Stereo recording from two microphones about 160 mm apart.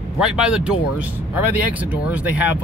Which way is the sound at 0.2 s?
5° right (ahead or behind).